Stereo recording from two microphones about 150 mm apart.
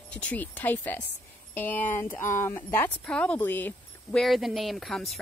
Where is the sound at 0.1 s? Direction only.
10° left (ahead or behind).